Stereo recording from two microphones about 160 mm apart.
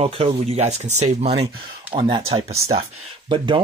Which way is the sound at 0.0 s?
35° right (ahead or behind).